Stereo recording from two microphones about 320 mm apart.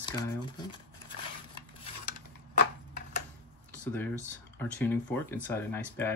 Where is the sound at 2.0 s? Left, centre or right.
Left.